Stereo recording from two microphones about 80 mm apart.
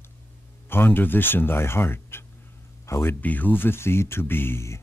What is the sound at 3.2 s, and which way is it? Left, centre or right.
Speech, left.